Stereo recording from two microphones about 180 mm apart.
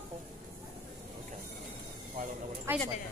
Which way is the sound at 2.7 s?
15° right (ahead or behind).